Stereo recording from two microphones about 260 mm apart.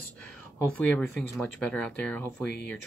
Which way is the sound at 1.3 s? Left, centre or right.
Centre.